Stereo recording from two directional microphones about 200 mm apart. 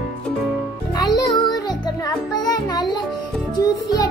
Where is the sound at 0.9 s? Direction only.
20° left (ahead or behind).